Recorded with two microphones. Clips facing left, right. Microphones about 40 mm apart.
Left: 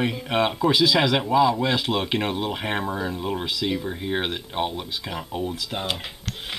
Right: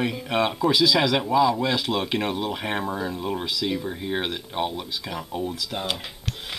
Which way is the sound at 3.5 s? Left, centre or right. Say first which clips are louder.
Left 1 dB; centre.